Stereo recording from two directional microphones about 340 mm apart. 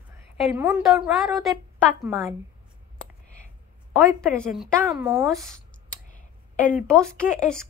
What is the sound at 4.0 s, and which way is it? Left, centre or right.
A woman's voice, centre.